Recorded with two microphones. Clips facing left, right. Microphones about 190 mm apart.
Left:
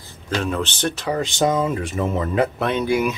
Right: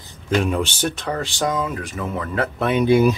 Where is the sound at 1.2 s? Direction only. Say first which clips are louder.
Left 5 dB; 20° left (ahead or behind).